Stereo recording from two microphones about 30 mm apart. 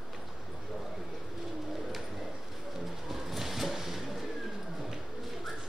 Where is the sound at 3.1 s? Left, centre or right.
Centre.